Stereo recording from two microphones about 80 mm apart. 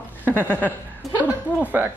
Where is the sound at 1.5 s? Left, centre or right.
Left.